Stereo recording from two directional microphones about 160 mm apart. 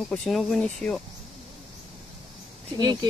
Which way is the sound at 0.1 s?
Centre (ahead or behind).